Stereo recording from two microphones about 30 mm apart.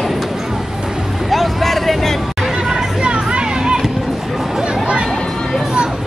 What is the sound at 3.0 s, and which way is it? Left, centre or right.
Music, right.